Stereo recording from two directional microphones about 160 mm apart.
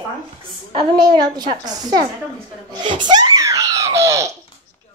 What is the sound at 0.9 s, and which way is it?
A child's voice, 25° right (ahead or behind).